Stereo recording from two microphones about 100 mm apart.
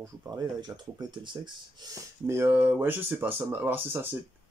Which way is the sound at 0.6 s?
50° right (ahead or behind).